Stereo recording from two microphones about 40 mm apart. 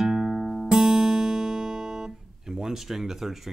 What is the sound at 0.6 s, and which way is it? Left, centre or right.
Guitar, centre.